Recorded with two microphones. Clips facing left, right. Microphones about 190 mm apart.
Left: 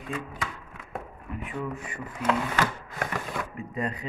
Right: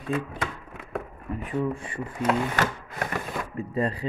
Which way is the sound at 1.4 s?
30° right (ahead or behind).